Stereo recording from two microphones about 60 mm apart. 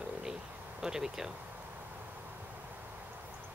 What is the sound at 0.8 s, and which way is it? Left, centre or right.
Speech, centre.